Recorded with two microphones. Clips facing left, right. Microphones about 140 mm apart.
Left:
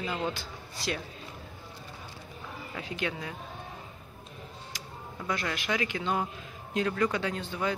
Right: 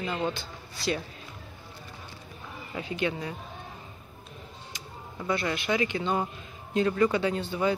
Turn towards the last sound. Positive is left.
turn(degrees=-5)  # may be behind; listen again after turning